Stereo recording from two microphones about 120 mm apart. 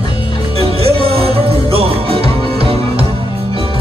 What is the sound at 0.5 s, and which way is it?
Music, 55° right (ahead or behind).